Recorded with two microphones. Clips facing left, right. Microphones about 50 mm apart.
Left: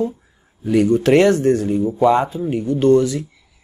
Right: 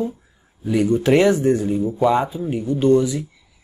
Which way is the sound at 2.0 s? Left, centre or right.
Centre.